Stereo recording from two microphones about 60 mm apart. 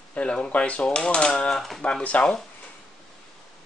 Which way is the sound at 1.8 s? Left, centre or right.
Left.